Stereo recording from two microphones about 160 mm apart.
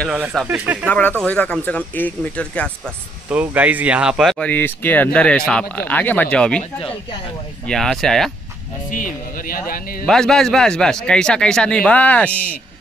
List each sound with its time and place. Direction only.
0.0 s speech: 5° right (ahead or behind)
0.8 s speech: 10° left (ahead or behind)
3.3 s a man's voice: 10° right (ahead or behind); by 6.6 s 5° left (ahead or behind)
7.6 s a man's voice: 5° left (ahead or behind)
8.9 s speech: 60° left (ahead or behind)
10.0 s a man's voice: 5° left (ahead or behind)